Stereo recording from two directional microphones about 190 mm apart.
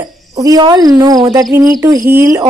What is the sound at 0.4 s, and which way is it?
Speech, 20° right (ahead or behind).